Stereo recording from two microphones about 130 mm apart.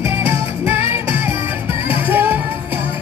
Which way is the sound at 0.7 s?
15° right (ahead or behind).